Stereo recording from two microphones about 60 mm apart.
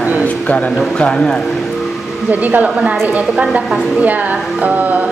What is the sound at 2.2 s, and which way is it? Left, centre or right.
Speech, right.